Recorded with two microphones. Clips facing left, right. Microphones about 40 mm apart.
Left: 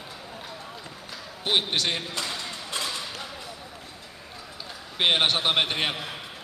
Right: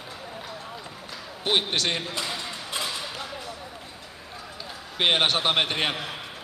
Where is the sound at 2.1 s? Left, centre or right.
Centre.